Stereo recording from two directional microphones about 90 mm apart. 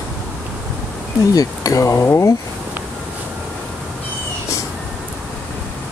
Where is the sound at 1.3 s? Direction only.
45° left (ahead or behind).